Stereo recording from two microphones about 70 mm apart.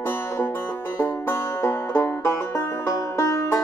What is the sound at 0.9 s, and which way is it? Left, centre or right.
Music, left.